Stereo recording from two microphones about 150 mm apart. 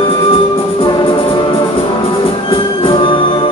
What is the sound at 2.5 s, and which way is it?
Music, 35° left (ahead or behind).